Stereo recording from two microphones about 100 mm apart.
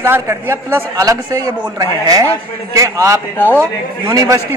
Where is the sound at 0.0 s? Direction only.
25° right (ahead or behind).